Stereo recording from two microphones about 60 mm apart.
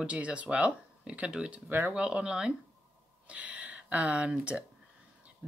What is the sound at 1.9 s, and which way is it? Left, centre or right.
Speech, centre.